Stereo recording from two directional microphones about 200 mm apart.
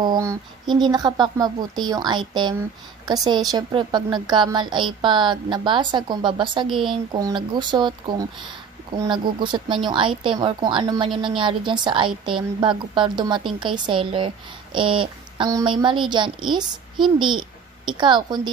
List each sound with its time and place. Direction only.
0.0 s a woman's voice: 20° right (ahead or behind)